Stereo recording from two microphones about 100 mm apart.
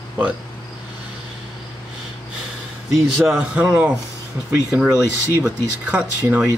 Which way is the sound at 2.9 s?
Centre (ahead or behind).